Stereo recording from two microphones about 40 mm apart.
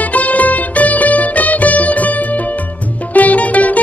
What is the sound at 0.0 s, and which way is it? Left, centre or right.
Music, left.